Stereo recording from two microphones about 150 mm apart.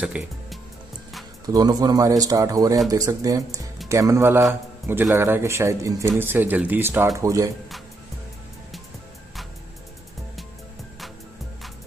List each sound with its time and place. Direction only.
0.0 s speech: 5° right (ahead or behind)
1.4 s speech: 25° right (ahead or behind)